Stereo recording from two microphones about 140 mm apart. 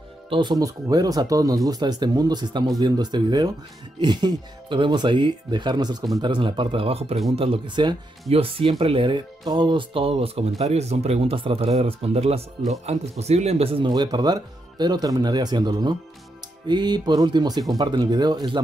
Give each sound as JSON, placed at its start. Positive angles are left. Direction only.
{"t": 0.3, "sound": "speech", "side_deg": -30}